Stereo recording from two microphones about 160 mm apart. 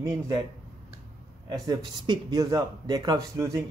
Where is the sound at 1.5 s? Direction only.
25° right (ahead or behind).